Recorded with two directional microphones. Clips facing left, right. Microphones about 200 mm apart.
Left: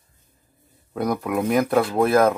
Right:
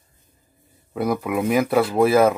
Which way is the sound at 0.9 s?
5° right (ahead or behind).